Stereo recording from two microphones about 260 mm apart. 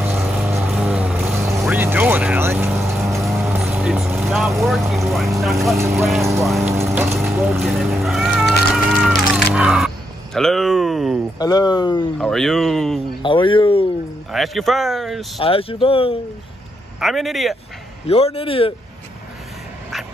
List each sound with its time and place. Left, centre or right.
0.0 s vehicle: centre
5.0 s speech: centre
6.7 s cat: centre
11.3 s speech: centre
12.2 s speech: centre
13.2 s a sound: centre
14.3 s speech: centre
15.4 s speech: left
17.0 s speech: centre
18.0 s speech: left